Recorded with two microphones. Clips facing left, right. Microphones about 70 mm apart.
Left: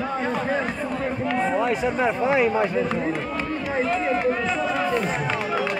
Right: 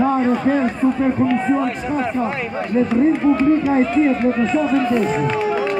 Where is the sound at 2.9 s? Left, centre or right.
Centre.